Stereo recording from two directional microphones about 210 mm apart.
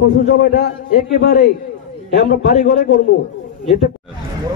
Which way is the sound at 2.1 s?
45° left (ahead or behind).